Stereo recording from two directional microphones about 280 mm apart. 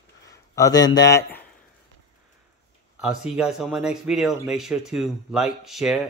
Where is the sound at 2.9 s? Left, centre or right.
Centre.